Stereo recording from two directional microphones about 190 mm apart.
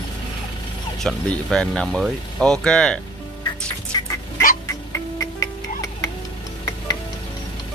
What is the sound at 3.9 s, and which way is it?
Chicken, 20° left (ahead or behind).